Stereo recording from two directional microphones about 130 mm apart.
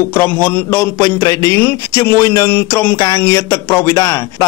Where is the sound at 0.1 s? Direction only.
15° left (ahead or behind).